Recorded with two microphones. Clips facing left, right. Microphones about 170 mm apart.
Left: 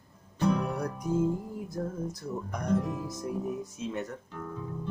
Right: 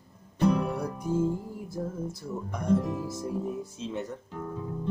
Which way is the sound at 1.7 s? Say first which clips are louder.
Right 1 dB; 5° right (ahead or behind).